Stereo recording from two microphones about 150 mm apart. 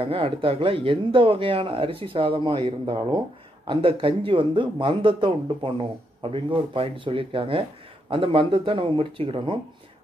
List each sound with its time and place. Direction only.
0.0 s speech: 35° right (ahead or behind)